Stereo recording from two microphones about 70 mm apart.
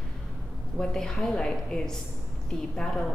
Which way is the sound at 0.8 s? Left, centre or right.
Centre.